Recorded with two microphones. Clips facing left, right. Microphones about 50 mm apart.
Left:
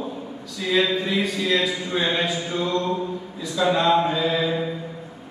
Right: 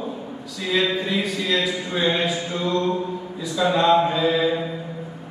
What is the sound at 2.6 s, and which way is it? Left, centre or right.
Mantra, centre.